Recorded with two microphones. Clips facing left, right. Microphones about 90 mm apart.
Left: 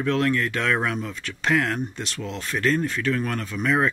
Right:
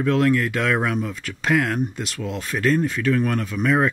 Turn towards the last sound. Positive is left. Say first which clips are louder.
# right 3 dB
turn(degrees=-5)  # may be behind; listen again after turning